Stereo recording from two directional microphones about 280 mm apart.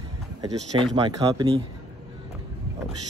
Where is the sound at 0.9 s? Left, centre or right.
Centre.